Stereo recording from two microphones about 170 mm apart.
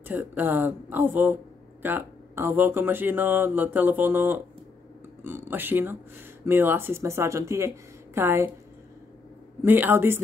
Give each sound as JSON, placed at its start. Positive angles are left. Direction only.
{"t": 0.1, "sound": "speech", "side_deg": -10}
{"t": 9.6, "sound": "speech", "side_deg": -10}